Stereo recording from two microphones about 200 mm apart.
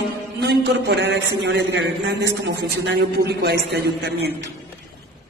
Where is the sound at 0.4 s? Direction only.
55° right (ahead or behind).